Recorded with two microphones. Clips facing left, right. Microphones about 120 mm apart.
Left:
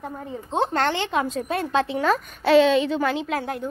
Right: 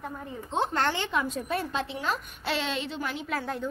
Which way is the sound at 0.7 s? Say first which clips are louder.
Left 5 dB; 75° left (ahead or behind).